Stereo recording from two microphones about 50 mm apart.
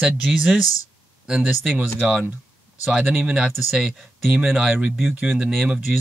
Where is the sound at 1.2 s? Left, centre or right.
Centre.